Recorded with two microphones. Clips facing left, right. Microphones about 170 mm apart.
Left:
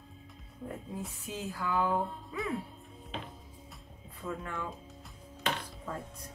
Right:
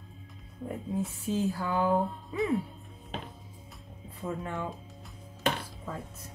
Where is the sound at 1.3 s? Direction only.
30° right (ahead or behind).